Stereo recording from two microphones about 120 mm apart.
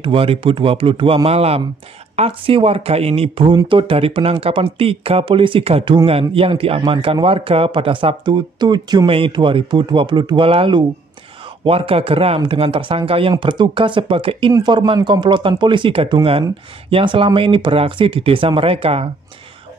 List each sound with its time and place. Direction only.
0.0 s speech: 50° right (ahead or behind)
3.4 s speech: 40° right (ahead or behind)
14.5 s speech: 35° right (ahead or behind); by 19.0 s 50° right (ahead or behind)